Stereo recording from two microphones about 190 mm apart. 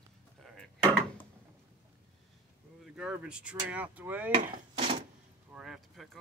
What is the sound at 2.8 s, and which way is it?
Speech, 5° right (ahead or behind).